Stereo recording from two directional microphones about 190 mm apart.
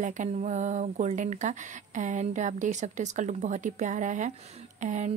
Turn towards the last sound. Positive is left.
turn(degrees=-40)  # may be behind; listen again after turning